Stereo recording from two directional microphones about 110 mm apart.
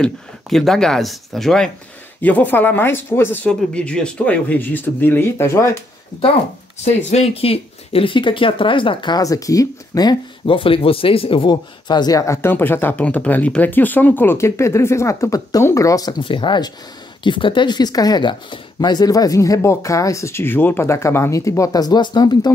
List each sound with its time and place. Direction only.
0.0 s speech: 5° left (ahead or behind)
2.2 s speech: 15° left (ahead or behind)
3.4 s speech: 10° left (ahead or behind)
6.8 s speech: 80° left; by 9.2 s 45° left (ahead or behind)
9.2 s speech: 30° left (ahead or behind)
10.4 s speech: 55° left (ahead or behind); by 16.2 s 30° left (ahead or behind)
16.2 s speech: 50° left (ahead or behind)